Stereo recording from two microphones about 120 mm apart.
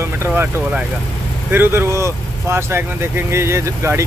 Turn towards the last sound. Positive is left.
turn(degrees=-20)  # may be behind; listen again after turning